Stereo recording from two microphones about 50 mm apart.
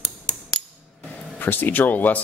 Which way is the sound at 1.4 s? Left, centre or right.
Left.